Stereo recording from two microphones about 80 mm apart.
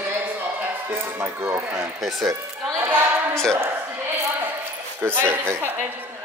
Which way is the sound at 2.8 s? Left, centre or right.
Right.